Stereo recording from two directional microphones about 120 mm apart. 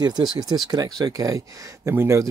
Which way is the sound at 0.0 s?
35° right (ahead or behind).